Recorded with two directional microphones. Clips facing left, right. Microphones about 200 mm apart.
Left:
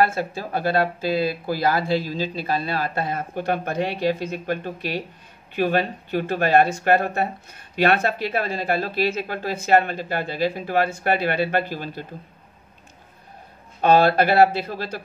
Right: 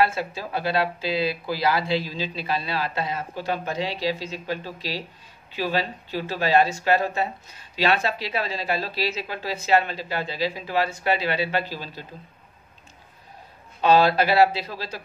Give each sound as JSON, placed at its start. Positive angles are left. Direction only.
{"t": 0.0, "sound": "speech", "side_deg": 50}
{"t": 13.7, "sound": "speech", "side_deg": 50}